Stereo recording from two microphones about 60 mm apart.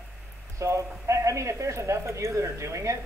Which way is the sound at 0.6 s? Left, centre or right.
Right.